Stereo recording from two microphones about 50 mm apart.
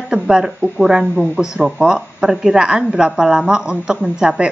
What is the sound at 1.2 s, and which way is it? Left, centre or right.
Speech, right.